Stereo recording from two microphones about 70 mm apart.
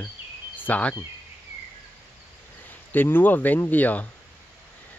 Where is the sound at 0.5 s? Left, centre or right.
Left.